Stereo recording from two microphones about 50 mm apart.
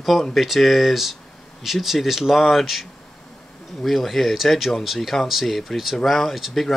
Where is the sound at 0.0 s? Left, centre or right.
Centre.